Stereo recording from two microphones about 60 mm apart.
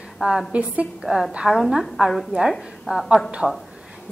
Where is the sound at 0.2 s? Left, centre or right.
Centre.